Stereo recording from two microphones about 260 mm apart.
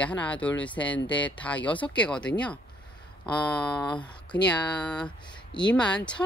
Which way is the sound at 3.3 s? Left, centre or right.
Centre.